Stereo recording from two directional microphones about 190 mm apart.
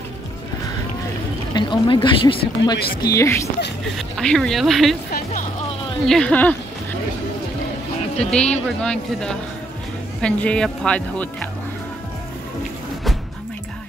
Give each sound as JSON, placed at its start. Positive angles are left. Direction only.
{"t": 1.5, "sound": "speech", "side_deg": 25}
{"t": 2.8, "sound": "speech", "side_deg": 55}
{"t": 3.1, "sound": "speech", "side_deg": 15}
{"t": 4.2, "sound": "speech", "side_deg": 5}
{"t": 6.0, "sound": "speech", "side_deg": 5}
{"t": 8.2, "sound": "speech", "side_deg": 5}